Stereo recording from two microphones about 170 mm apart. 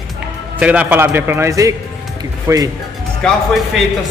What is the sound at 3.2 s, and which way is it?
Speech, 5° left (ahead or behind).